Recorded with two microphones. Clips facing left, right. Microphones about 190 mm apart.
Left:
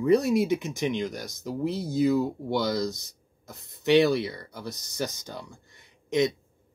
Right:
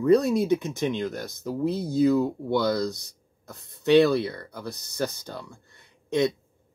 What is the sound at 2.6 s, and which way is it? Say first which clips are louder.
Speech: right 2 dB; 60° right (ahead or behind).